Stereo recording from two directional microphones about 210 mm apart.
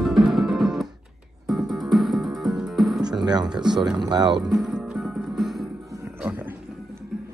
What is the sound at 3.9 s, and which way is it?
Speech, 20° right (ahead or behind).